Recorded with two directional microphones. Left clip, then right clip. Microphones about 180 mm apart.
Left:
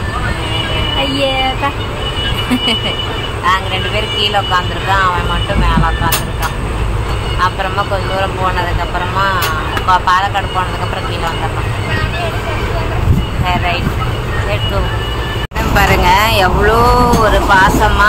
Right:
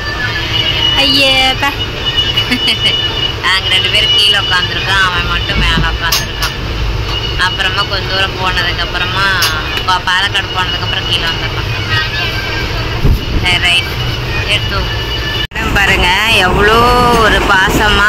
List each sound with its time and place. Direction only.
1.0 s a sound: centre (ahead or behind)
3.4 s speech: 30° left (ahead or behind)
9.8 s speech: 30° left (ahead or behind)
15.7 s speech: 10° left (ahead or behind)